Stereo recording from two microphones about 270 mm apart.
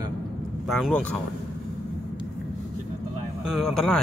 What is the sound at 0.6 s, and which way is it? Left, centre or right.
Speech, centre.